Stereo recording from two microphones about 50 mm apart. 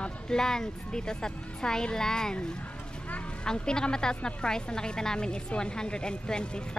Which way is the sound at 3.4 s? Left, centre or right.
Centre.